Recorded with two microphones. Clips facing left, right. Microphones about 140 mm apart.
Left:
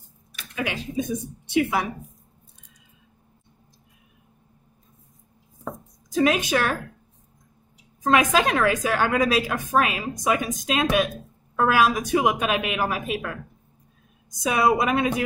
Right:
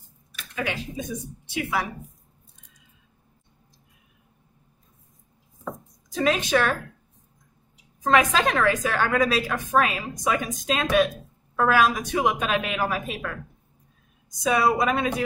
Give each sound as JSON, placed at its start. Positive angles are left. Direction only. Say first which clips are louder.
{"t": 1.5, "sound": "a woman's voice", "louder": "left 5 dB", "side_deg": 20}
{"t": 6.1, "sound": "a woman's voice", "louder": "left 1 dB", "side_deg": 10}
{"t": 8.0, "sound": "a woman's voice", "louder": "left 1 dB", "side_deg": 10}
{"t": 14.4, "sound": "a woman's voice", "louder": "left 1 dB", "side_deg": 10}